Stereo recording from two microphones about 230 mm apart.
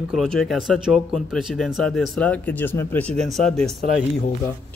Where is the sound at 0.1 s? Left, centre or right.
Centre.